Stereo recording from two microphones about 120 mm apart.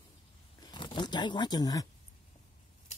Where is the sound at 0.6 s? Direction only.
40° left (ahead or behind).